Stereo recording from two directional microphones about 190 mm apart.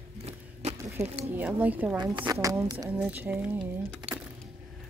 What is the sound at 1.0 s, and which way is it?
Speech, 35° right (ahead or behind).